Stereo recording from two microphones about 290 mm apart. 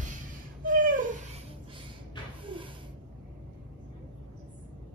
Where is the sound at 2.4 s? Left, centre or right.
Centre.